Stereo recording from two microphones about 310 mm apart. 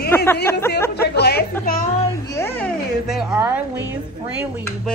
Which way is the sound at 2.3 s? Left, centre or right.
Centre.